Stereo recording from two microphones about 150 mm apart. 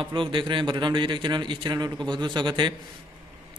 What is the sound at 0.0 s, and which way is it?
A man's voice, 35° right (ahead or behind).